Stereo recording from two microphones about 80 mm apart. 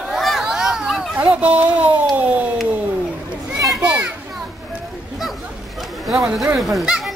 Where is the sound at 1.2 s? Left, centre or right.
Centre.